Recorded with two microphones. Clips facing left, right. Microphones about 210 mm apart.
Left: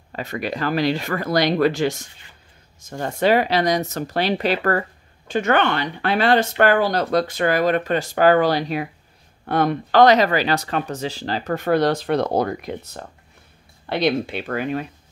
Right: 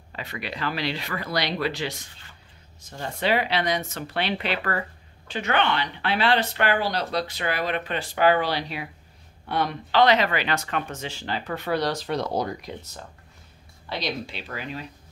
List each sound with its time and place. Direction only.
0.1 s speech: 45° left (ahead or behind)